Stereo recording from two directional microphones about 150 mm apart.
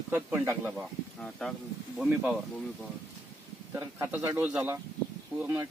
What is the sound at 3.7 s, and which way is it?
Speech, 15° right (ahead or behind).